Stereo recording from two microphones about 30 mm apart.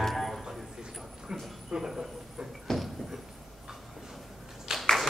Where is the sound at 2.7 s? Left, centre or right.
Centre.